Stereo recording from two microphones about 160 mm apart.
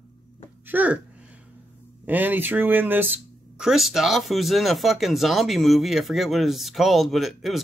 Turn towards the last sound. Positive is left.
turn(degrees=0)  # may be behind; listen again after turning